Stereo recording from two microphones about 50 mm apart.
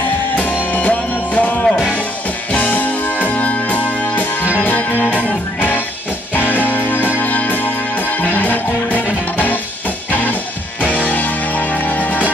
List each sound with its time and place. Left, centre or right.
0.7 s music: left
10.8 s music: left